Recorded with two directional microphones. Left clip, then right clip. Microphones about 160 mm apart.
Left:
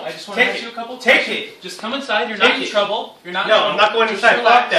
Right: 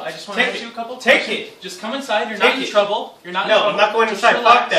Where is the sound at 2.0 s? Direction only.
Centre (ahead or behind).